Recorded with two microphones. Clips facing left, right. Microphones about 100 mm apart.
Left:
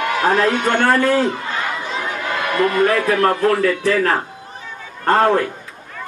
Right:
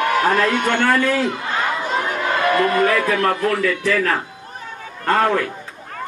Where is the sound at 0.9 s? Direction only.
20° left (ahead or behind).